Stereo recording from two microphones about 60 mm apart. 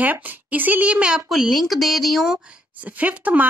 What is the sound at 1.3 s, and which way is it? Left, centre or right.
Speech, centre.